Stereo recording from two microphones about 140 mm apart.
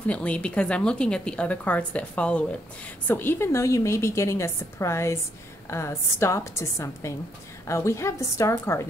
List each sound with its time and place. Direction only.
0.0 s a woman's voice: 10° left (ahead or behind)